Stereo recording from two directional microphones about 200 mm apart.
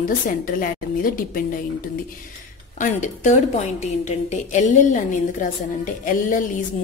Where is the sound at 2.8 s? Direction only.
40° left (ahead or behind).